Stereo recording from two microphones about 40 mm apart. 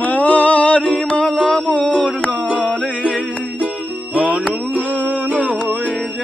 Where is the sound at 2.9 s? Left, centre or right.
Right.